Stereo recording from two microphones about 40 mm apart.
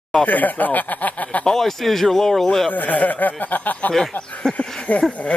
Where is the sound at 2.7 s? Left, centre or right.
Left.